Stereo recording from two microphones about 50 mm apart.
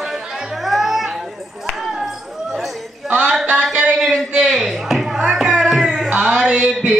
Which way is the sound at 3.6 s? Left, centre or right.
Centre.